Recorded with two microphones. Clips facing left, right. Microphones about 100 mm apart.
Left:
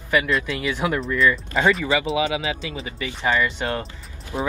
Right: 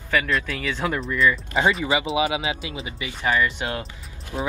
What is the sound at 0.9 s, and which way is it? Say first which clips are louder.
Speech: even; centre (ahead or behind).